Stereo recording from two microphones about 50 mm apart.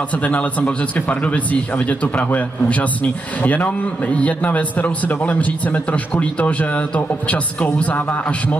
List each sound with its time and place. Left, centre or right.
0.1 s a man's voice: left